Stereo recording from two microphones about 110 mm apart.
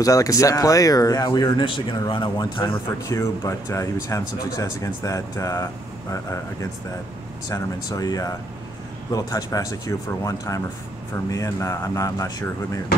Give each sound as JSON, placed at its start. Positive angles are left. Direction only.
{"t": 0.0, "sound": "speech", "side_deg": 30}
{"t": 2.7, "sound": "speech", "side_deg": 30}